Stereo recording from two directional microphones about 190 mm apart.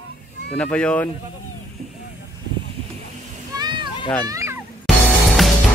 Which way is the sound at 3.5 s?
25° right (ahead or behind).